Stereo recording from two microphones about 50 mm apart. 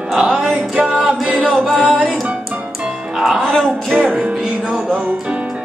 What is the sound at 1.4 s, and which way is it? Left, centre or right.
A capella, centre.